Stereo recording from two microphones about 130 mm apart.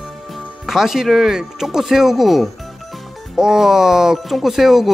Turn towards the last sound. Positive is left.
turn(degrees=0)  # may be behind; listen again after turning